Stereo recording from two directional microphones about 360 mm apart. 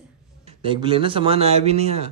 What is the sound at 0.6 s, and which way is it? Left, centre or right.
Speech, centre.